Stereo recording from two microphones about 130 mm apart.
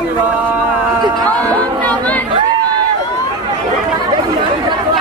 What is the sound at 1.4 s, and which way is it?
Chatter, 10° left (ahead or behind).